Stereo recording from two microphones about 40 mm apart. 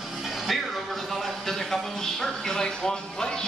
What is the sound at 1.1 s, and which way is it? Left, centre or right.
Speech, centre.